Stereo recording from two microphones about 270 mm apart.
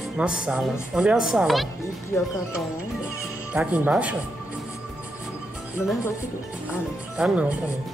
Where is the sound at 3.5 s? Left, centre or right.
Centre.